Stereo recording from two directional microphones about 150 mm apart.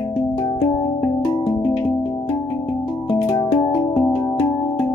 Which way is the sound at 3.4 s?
20° left (ahead or behind).